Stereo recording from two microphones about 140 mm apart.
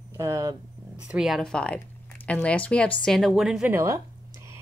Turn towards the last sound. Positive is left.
turn(degrees=-20)  # may be behind; listen again after turning